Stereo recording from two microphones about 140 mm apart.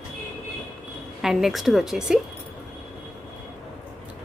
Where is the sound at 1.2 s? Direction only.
Centre (ahead or behind).